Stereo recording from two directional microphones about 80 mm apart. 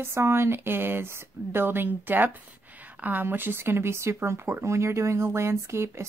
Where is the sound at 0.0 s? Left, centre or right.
Right.